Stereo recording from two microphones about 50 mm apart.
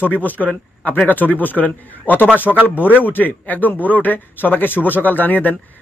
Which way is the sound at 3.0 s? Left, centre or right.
Left.